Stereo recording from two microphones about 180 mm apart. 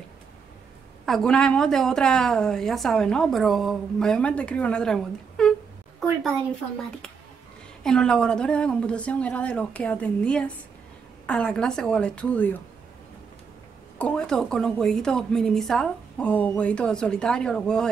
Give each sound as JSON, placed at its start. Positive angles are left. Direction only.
{"t": 1.0, "sound": "a woman's voice", "side_deg": 0}
{"t": 7.8, "sound": "a woman's voice", "side_deg": 5}
{"t": 13.9, "sound": "a woman's voice", "side_deg": 5}